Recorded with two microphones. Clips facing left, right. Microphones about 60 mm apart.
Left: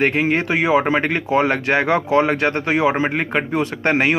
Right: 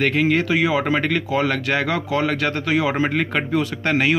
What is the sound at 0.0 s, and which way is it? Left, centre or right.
A man's voice, left.